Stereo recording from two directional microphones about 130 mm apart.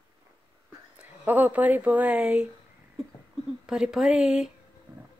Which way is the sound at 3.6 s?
5° right (ahead or behind).